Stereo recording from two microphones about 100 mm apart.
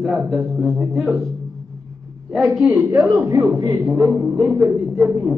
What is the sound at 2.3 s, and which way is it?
Speech, centre (ahead or behind).